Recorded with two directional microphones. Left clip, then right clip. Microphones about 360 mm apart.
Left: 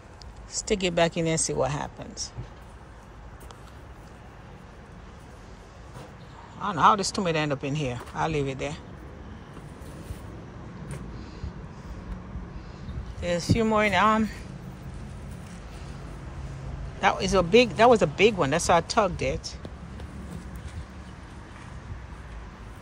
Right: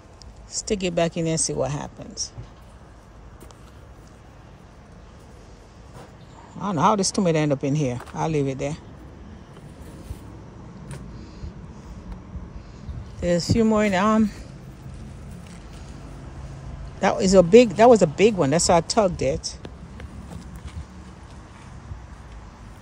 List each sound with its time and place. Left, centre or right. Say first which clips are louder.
0.5 s speech: right 1 dB; centre
6.6 s speech: even; centre
13.2 s speech: right 5 dB; centre
17.0 s speech: right 6 dB; centre